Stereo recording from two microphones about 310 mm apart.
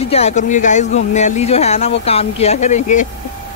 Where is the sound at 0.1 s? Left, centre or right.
Left.